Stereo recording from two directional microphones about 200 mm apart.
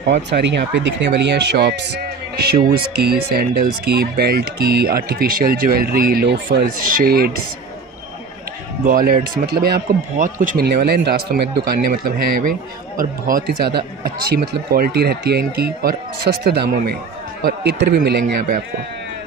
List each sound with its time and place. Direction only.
0.1 s speech: 60° right (ahead or behind)
8.8 s speech: 45° right (ahead or behind)